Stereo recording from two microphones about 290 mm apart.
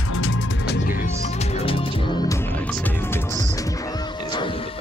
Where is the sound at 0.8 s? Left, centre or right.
Left.